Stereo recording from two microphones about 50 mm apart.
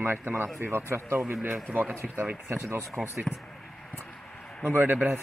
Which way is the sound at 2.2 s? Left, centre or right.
Right.